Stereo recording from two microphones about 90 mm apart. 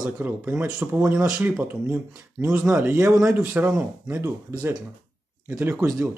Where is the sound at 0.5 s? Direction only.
10° right (ahead or behind).